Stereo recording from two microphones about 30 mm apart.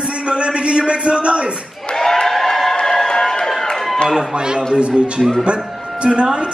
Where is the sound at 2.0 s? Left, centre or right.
Centre.